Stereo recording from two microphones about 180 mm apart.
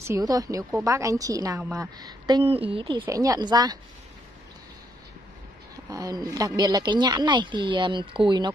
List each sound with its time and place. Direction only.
0.0 s a woman's voice: 20° right (ahead or behind)
3.1 s a woman's voice: 20° right (ahead or behind)
5.9 s a woman's voice: 20° right (ahead or behind)